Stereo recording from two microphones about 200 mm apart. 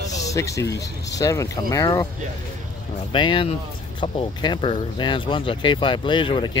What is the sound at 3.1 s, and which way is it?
Speech, 25° left (ahead or behind).